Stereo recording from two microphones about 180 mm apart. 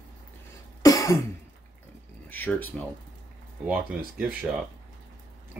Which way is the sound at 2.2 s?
10° left (ahead or behind).